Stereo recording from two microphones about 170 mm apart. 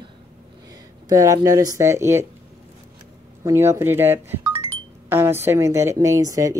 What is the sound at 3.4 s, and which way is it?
A woman's voice, 15° right (ahead or behind).